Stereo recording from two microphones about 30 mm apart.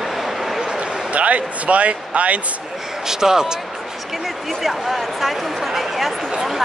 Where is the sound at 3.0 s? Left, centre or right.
Centre.